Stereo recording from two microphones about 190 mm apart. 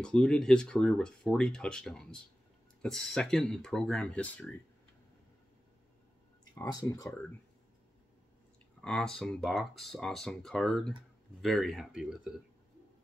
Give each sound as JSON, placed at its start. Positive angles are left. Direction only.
{"t": 0.0, "sound": "speech", "side_deg": 5}
{"t": 6.5, "sound": "speech", "side_deg": 20}
{"t": 8.8, "sound": "speech", "side_deg": 5}